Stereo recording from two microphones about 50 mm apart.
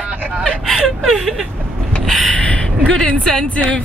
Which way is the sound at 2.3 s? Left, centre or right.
Left.